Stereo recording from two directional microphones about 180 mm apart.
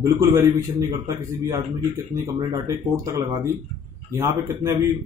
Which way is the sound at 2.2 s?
20° right (ahead or behind).